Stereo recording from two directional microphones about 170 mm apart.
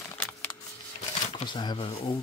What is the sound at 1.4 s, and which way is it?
Speech, 25° left (ahead or behind).